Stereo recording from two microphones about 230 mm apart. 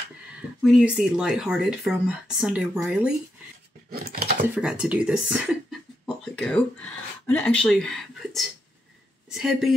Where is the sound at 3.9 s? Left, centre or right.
Right.